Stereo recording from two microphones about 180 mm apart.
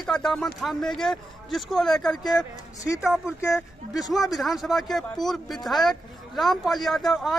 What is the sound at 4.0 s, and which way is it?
Speech, centre (ahead or behind).